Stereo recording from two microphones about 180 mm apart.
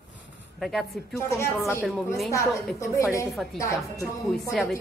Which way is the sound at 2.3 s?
15° left (ahead or behind).